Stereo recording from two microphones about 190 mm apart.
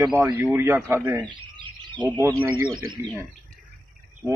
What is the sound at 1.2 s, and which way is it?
Bird, 25° right (ahead or behind).